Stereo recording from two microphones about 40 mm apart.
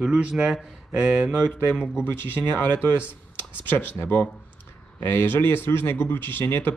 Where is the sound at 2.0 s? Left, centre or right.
Left.